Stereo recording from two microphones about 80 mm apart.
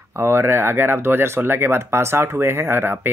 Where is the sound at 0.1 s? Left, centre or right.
Right.